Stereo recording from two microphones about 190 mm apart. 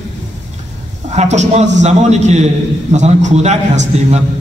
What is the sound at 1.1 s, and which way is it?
A man's voice, 35° right (ahead or behind).